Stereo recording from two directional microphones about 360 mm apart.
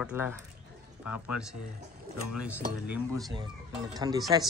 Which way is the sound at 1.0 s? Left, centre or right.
Left.